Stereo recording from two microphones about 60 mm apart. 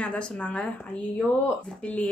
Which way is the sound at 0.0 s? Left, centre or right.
Centre.